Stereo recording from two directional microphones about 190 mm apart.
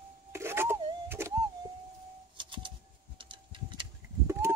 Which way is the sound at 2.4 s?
25° right (ahead or behind).